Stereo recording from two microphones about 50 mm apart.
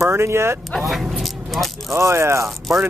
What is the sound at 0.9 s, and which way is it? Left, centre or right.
Vehicle, centre.